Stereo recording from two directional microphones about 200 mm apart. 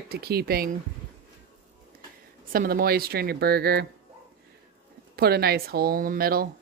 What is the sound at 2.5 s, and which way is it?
Speech, 45° right (ahead or behind).